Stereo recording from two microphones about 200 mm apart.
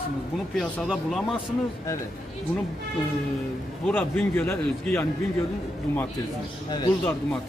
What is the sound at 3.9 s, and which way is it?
A man's voice, 10° left (ahead or behind).